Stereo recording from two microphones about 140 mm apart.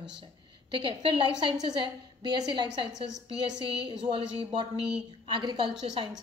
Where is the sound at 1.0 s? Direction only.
35° right (ahead or behind).